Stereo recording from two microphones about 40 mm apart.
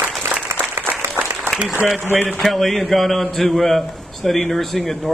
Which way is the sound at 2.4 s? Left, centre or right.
Centre.